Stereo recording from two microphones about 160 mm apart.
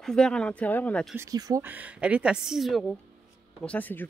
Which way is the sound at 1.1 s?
20° right (ahead or behind).